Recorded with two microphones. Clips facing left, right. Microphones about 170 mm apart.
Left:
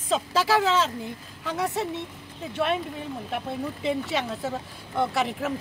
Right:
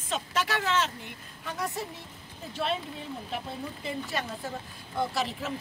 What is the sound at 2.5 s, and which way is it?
Speech, 65° left (ahead or behind).